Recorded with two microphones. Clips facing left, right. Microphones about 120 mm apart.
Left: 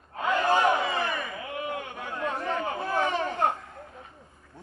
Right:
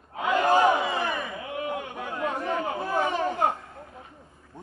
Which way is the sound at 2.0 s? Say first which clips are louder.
Right 2 dB; 15° right (ahead or behind).